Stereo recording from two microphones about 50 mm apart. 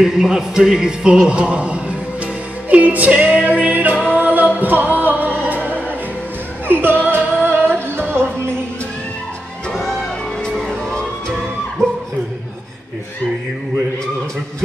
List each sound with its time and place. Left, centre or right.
0.0 s music: centre; by 8.3 s right
10.4 s music: centre
11.8 s a sound: right